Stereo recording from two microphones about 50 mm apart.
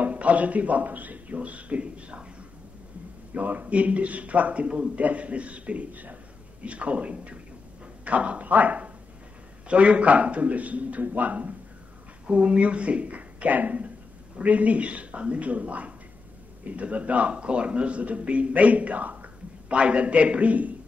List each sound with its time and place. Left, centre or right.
0.0 s speech: right
3.3 s a man's voice: right